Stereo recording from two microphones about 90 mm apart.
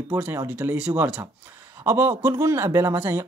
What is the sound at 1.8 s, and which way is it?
Speech, 30° right (ahead or behind).